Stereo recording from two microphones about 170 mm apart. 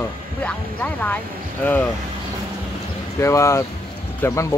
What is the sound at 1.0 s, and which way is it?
Speech, 10° left (ahead or behind).